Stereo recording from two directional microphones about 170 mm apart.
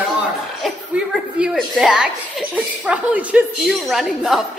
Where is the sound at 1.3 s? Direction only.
Centre (ahead or behind).